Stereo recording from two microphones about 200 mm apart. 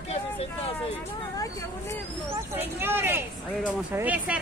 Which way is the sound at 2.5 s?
10° right (ahead or behind).